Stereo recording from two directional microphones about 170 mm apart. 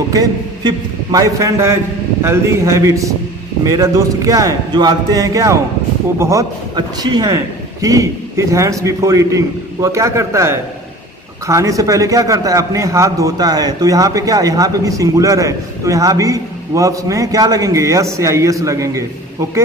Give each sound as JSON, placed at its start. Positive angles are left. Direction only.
{"t": 0.1, "sound": "a man's voice", "side_deg": -20}